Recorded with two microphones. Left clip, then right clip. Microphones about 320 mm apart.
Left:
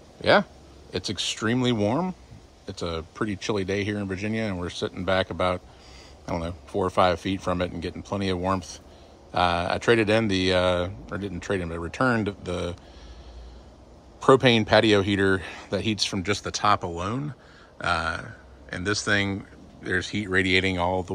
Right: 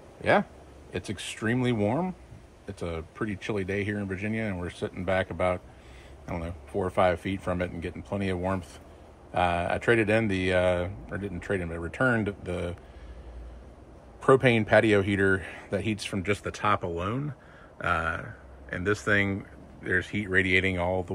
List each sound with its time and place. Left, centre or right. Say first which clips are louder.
0.2 s speech: left 4 dB; centre
14.2 s speech: left 3 dB; centre